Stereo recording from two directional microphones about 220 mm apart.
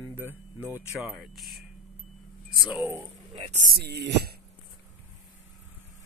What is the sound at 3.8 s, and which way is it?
Speech, 50° right (ahead or behind).